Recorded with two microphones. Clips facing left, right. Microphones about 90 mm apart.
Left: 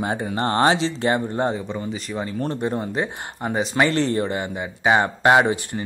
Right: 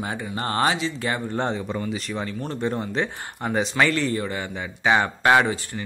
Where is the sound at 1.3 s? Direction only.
10° left (ahead or behind).